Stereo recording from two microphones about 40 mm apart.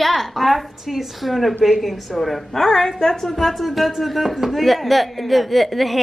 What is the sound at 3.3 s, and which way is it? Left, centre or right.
Speech, centre.